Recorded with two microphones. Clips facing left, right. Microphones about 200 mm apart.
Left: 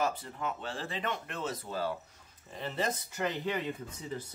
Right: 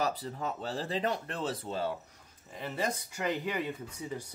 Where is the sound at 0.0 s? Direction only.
35° right (ahead or behind).